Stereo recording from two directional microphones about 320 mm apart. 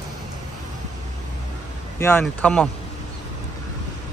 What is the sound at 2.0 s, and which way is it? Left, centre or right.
Speech, centre.